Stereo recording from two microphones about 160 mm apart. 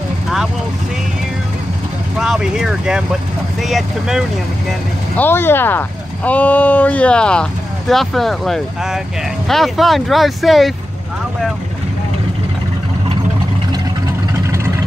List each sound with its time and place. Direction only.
2.1 s speech: 5° right (ahead or behind)
5.1 s speech: 15° left (ahead or behind)
14.4 s vehicle: 20° right (ahead or behind)